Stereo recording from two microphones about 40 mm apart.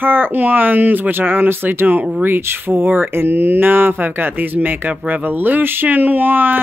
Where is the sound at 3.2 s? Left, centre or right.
Right.